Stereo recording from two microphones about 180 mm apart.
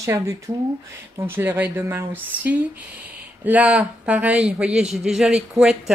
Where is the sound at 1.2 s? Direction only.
10° right (ahead or behind).